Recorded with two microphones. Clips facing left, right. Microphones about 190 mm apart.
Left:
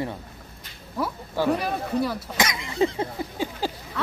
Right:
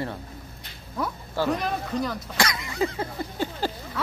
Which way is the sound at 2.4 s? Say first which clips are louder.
Left 2 dB; 20° left (ahead or behind).